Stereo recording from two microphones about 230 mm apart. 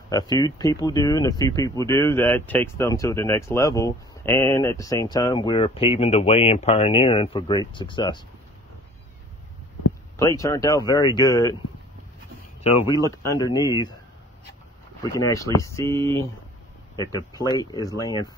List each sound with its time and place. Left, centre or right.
0.1 s speech: centre
10.1 s speech: centre
12.6 s speech: left
13.4 s speech: centre
15.1 s speech: centre